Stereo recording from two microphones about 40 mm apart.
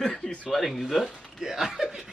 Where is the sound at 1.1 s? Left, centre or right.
Centre.